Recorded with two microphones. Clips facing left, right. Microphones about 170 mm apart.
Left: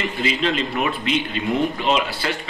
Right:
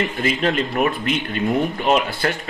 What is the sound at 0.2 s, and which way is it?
Speech, 45° right (ahead or behind).